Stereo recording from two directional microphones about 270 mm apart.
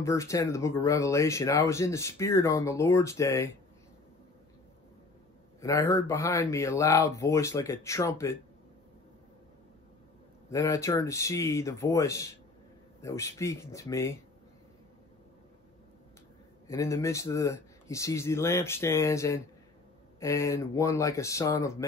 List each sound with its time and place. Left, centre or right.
0.0 s speech: centre
5.6 s speech: centre
10.5 s speech: centre
16.6 s speech: centre